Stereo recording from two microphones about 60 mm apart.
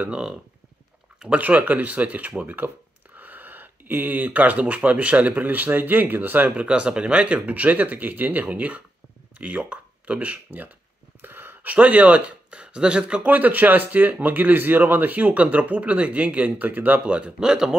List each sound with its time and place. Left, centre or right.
0.0 s speech: centre
6.5 s speech: centre
17.0 s speech: centre